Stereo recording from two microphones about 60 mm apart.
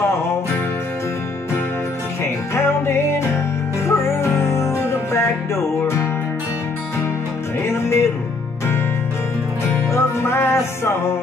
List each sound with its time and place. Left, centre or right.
2.5 s music: left
7.6 s music: left
9.8 s music: left